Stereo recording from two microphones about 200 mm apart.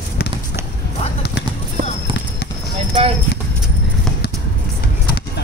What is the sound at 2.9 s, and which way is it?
Clip-clop, 30° right (ahead or behind).